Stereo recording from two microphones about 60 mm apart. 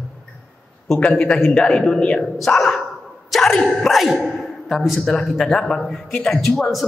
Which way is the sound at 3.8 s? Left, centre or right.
Centre.